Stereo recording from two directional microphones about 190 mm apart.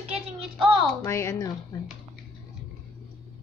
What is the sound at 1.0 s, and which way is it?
Speech, 15° left (ahead or behind).